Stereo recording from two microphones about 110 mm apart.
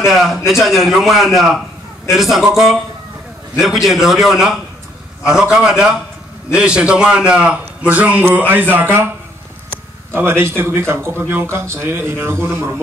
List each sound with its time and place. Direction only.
0.0 s a man's voice: centre (ahead or behind); by 9.1 s 20° right (ahead or behind)
10.1 s speech: 20° right (ahead or behind)